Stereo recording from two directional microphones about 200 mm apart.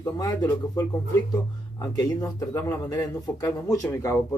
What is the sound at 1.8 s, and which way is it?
A man's voice, 20° left (ahead or behind).